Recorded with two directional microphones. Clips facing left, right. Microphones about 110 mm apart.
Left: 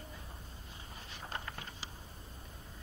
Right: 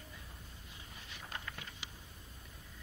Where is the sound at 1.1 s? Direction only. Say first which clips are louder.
Left 3 dB; 35° left (ahead or behind).